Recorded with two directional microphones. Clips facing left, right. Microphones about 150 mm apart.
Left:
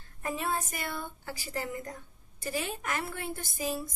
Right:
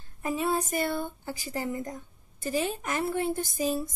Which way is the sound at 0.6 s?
25° right (ahead or behind).